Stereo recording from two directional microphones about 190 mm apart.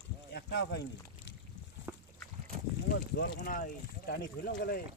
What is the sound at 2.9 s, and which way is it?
Speech, 55° left (ahead or behind).